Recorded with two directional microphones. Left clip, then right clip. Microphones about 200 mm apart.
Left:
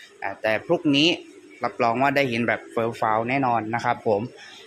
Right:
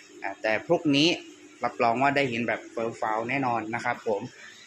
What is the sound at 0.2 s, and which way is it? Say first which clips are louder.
A man's voice: left 3 dB; 15° left (ahead or behind).